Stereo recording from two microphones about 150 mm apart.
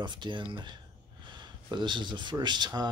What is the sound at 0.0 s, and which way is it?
Speech, 30° right (ahead or behind).